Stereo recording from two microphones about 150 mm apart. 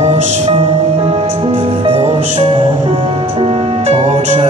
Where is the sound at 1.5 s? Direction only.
40° right (ahead or behind).